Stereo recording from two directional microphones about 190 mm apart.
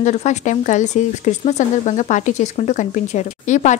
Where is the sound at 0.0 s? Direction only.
40° left (ahead or behind).